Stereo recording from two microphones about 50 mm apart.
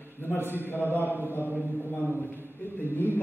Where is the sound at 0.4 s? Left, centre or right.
Right.